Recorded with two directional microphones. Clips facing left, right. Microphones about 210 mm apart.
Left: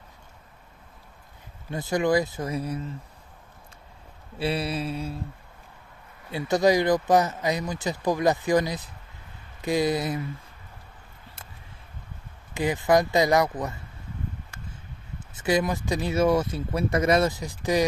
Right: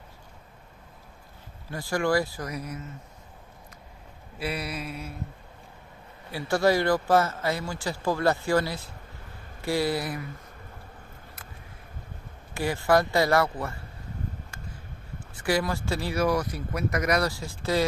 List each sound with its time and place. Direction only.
1.7 s speech: 20° left (ahead or behind)
4.4 s speech: 30° left (ahead or behind)
6.3 s speech: 20° left (ahead or behind)
12.5 s speech: 20° left (ahead or behind)